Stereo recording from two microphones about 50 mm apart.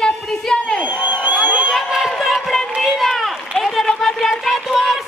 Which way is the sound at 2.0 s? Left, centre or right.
Centre.